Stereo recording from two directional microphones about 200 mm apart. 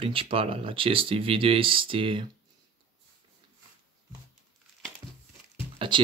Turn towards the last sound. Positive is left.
turn(degrees=-25)  # may be behind; listen again after turning